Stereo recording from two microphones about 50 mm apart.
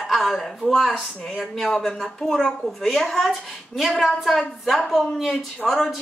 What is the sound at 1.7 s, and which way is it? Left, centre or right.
Speech, centre.